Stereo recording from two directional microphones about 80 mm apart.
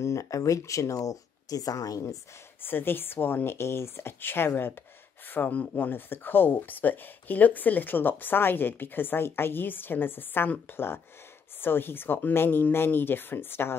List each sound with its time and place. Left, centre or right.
0.0 s speech: left
2.6 s speech: left